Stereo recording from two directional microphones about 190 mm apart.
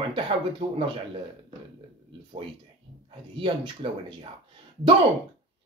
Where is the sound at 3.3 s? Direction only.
25° right (ahead or behind).